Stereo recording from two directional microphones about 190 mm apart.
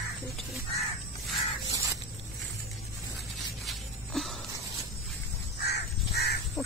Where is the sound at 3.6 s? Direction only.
Centre (ahead or behind).